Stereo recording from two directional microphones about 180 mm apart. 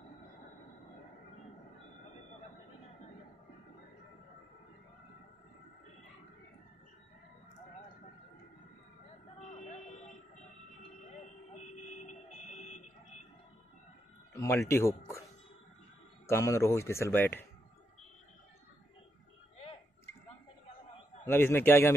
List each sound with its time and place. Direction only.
9.7 s fire alarm: 40° left (ahead or behind)
11.5 s fire alarm: 40° left (ahead or behind)
14.3 s speech: 15° left (ahead or behind)
16.3 s speech: 15° left (ahead or behind)
21.3 s speech: 10° left (ahead or behind)